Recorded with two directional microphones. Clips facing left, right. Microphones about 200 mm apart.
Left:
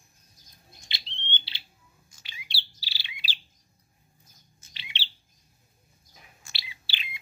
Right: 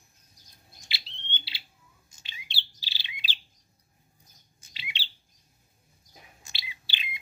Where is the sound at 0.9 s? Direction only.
5° right (ahead or behind).